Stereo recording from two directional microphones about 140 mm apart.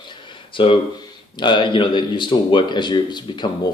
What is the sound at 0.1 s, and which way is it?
Speech, 35° left (ahead or behind).